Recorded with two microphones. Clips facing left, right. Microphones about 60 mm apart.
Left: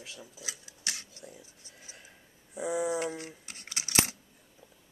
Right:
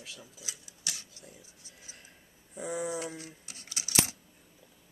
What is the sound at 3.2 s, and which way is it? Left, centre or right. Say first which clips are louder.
Coin: left 3 dB; left.